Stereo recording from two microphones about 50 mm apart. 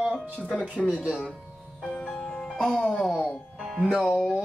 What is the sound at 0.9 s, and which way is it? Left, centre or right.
Speech, right.